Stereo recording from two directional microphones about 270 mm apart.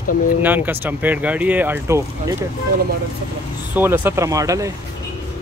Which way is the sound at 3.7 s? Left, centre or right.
Centre.